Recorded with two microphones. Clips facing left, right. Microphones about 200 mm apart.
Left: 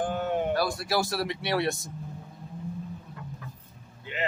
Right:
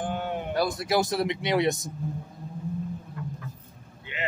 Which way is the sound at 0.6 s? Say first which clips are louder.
Right 2 dB; 20° right (ahead or behind).